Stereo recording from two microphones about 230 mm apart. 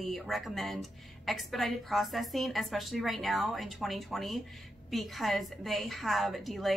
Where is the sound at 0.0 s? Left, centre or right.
Centre.